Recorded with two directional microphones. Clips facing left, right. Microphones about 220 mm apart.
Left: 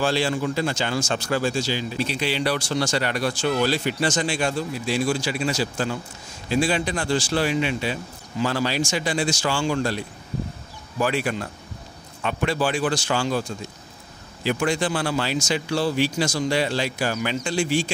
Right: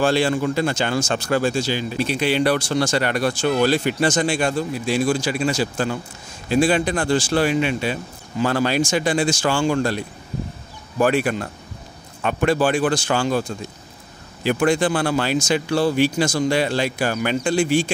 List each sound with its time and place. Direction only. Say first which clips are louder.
0.0 s speech: right 4 dB; 55° right (ahead or behind)
14.4 s speech: right 5 dB; 55° right (ahead or behind)